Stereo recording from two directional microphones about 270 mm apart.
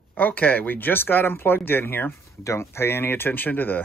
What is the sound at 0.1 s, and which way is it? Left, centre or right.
Speech, centre.